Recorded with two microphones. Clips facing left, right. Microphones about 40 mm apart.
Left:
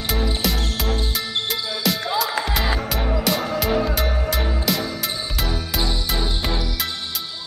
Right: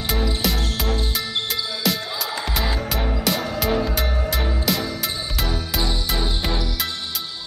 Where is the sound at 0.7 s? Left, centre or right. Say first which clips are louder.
Even; centre.